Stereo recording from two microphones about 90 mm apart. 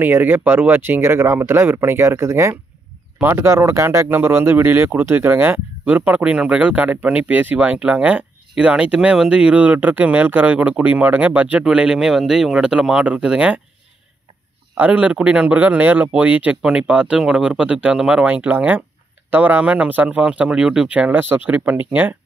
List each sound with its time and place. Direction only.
0.0 s speech: 20° right (ahead or behind)
14.8 s speech: 15° right (ahead or behind)